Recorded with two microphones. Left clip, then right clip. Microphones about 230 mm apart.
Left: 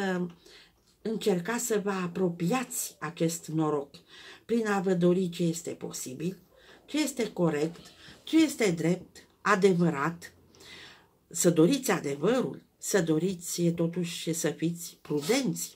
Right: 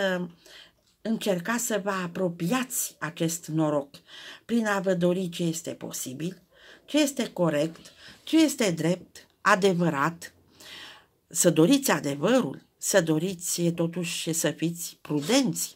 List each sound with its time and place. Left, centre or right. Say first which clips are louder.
0.0 s speech: right 5 dB; right